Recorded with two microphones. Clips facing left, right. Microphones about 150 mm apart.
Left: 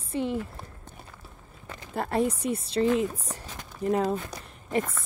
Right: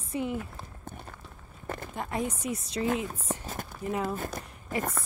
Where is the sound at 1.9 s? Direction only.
35° left (ahead or behind).